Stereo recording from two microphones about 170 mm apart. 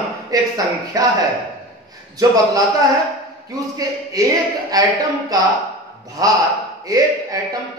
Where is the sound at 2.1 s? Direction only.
20° right (ahead or behind).